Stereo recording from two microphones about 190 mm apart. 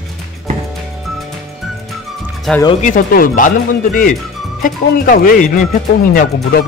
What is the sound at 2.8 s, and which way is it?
Speech, 45° left (ahead or behind).